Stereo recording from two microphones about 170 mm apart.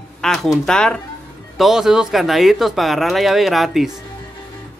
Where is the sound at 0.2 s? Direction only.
Centre (ahead or behind).